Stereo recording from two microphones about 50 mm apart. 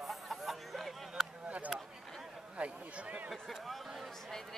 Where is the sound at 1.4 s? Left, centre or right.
Right.